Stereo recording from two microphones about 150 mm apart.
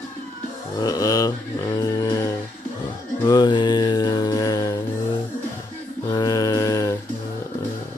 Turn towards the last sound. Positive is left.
turn(degrees=20)  # may be behind; listen again after turning